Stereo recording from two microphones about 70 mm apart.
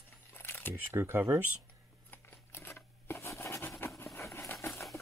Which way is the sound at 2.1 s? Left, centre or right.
Left.